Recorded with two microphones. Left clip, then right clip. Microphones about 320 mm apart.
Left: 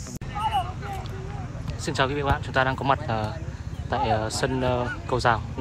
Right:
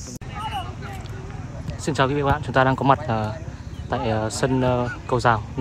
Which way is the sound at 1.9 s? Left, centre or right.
Centre.